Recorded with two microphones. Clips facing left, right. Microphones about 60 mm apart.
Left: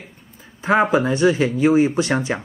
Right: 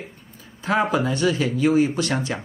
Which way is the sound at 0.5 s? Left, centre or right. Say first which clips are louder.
Left 4 dB; left.